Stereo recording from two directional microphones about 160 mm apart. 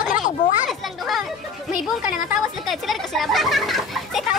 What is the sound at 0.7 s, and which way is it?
Children playing, centre (ahead or behind).